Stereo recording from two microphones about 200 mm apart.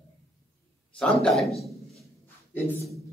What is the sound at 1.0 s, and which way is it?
Speech, 5° left (ahead or behind).